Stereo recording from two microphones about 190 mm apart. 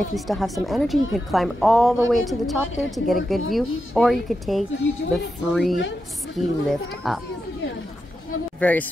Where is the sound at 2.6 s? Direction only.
90° left.